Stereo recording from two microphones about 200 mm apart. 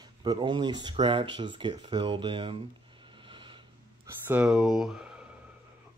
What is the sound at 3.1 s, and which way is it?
Wheeze, 25° right (ahead or behind).